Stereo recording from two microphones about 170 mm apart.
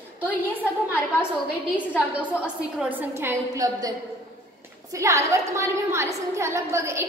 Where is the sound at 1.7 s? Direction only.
10° right (ahead or behind).